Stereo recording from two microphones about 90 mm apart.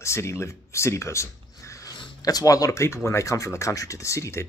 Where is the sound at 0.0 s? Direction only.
30° left (ahead or behind).